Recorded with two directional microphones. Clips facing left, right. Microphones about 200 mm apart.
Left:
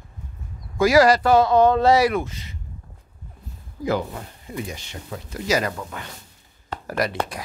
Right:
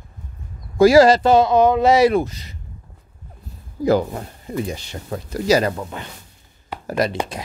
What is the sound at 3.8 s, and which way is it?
Speech, 40° right (ahead or behind).